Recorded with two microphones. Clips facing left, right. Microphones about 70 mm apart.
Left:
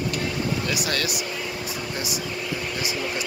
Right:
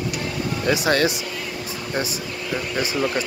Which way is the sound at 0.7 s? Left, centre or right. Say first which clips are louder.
Right 7 dB; right.